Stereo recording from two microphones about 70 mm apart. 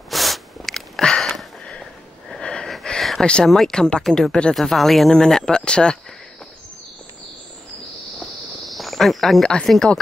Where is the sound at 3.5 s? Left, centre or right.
Centre.